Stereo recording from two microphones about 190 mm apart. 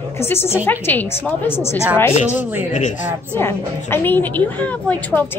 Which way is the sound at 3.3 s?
10° left (ahead or behind).